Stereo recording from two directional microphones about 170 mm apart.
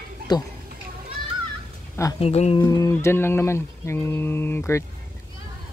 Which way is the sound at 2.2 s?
40° left (ahead or behind).